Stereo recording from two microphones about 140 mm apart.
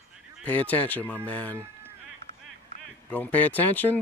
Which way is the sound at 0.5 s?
10° left (ahead or behind).